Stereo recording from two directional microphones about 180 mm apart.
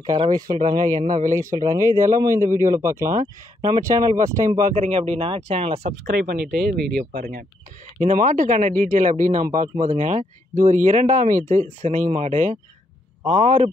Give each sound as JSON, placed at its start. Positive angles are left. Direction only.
{"t": 0.0, "sound": "speech", "side_deg": -20}
{"t": 0.8, "sound": "speech", "side_deg": -45}
{"t": 1.7, "sound": "speech", "side_deg": -15}
{"t": 4.7, "sound": "speech", "side_deg": -35}
{"t": 6.0, "sound": "speech", "side_deg": -55}
{"t": 8.0, "sound": "speech", "side_deg": -40}